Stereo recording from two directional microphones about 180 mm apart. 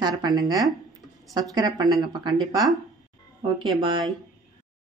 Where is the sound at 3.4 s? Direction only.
30° right (ahead or behind).